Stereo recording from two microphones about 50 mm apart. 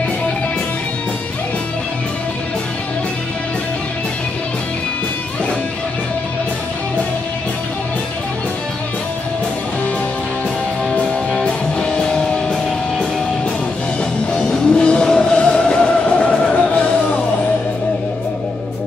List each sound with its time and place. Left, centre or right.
11.0 s music: centre
14.4 s music: centre